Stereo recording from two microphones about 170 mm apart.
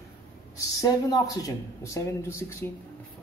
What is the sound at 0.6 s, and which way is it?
Speech, 20° left (ahead or behind).